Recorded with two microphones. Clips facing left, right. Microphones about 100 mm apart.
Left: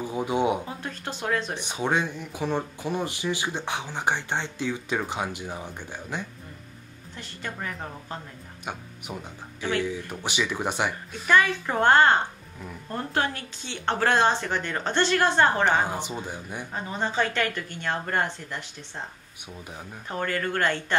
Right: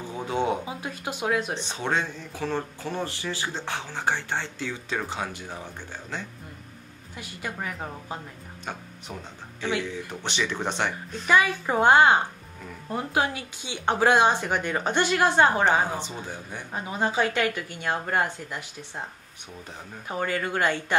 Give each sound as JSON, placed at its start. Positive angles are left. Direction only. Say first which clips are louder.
{"t": 0.0, "sound": "speech", "louder": "left 2 dB", "side_deg": 15}
{"t": 0.7, "sound": "speech", "louder": "right 1 dB", "side_deg": -10}
{"t": 1.5, "sound": "speech", "louder": "left 1 dB", "side_deg": 15}
{"t": 7.2, "sound": "speech", "louder": "right 1 dB", "side_deg": -10}
{"t": 9.8, "sound": "speech", "louder": "left 2 dB", "side_deg": 10}
{"t": 11.2, "sound": "speech", "louder": "even", "side_deg": -10}
{"t": 15.9, "sound": "speech", "louder": "left 1 dB", "side_deg": 15}
{"t": 16.7, "sound": "speech", "louder": "right 2 dB", "side_deg": -5}
{"t": 20.1, "sound": "speech", "louder": "even", "side_deg": -10}